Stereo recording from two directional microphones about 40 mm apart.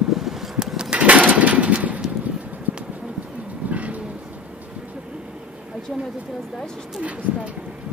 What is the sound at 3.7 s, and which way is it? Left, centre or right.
Music, right.